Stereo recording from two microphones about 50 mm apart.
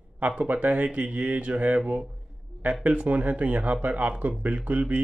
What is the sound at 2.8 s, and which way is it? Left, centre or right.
Speech, right.